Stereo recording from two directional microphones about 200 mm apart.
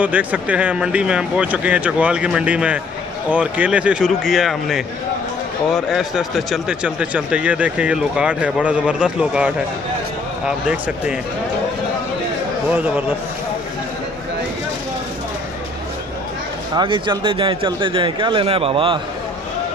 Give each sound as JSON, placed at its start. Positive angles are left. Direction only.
{"t": 0.0, "sound": "speech", "side_deg": -10}
{"t": 12.7, "sound": "speech", "side_deg": -5}
{"t": 16.7, "sound": "speech", "side_deg": -25}